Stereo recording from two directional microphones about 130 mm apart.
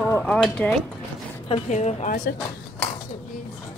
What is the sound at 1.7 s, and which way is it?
Speech, 60° left (ahead or behind).